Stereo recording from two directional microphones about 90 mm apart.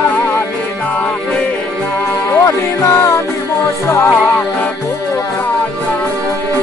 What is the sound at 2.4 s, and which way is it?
Music, 30° left (ahead or behind).